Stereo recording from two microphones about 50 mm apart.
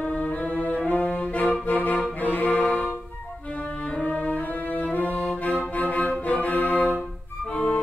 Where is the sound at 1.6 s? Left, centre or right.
Left.